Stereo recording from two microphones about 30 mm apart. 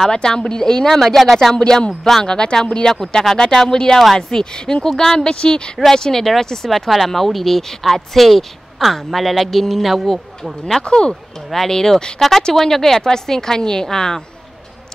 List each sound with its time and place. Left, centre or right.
0.1 s speech: left
0.8 s a woman's voice: centre
1.5 s speech: left
6.7 s speech: centre
10.8 s speech: left
11.5 s a woman's voice: centre